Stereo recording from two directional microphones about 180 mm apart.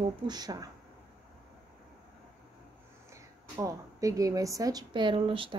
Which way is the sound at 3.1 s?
20° right (ahead or behind).